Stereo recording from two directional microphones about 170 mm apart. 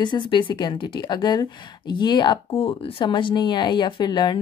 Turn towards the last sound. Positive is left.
turn(degrees=25)  # may be behind; listen again after turning